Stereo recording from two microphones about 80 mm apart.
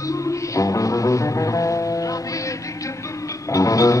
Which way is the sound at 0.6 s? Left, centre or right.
Left.